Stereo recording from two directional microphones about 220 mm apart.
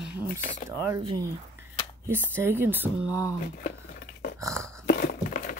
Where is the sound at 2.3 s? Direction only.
10° right (ahead or behind).